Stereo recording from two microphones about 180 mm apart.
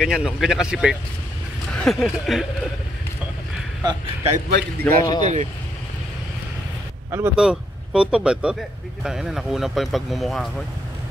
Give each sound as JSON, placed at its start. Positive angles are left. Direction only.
{"t": 0.0, "sound": "speech", "side_deg": 0}
{"t": 4.5, "sound": "a man's voice", "side_deg": -70}
{"t": 4.8, "sound": "speech", "side_deg": 20}
{"t": 5.2, "sound": "speech", "side_deg": -40}
{"t": 7.1, "sound": "speech", "side_deg": -10}